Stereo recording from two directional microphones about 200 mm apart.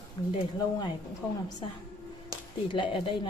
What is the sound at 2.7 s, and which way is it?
Speech, 25° left (ahead or behind).